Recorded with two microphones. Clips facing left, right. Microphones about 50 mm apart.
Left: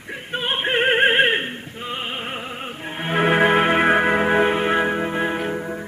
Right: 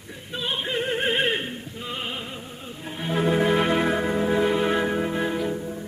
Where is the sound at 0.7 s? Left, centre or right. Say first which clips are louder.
Left 10 dB; left.